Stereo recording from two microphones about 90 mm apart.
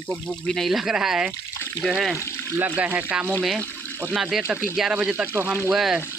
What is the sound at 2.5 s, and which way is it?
Speech, 20° right (ahead or behind).